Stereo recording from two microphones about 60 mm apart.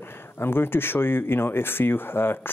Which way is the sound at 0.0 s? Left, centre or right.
Left.